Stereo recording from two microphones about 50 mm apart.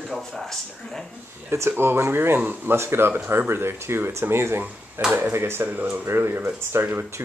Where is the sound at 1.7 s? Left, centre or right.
Right.